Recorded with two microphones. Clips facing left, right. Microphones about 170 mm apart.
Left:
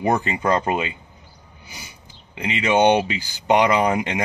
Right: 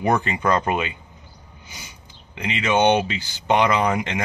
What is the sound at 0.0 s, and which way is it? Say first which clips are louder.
Speech: even; 30° left (ahead or behind).